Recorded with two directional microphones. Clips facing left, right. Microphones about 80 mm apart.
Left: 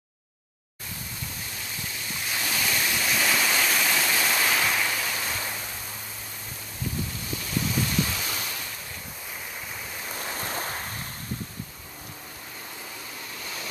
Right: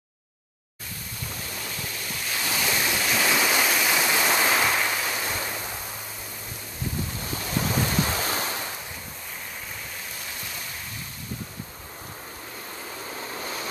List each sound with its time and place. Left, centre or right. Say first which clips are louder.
2.5 s waterfall: right 2 dB; centre
7.3 s waves: right 2 dB; right
10.4 s waves: left 6 dB; left
13.3 s vehicle: right 5 dB; right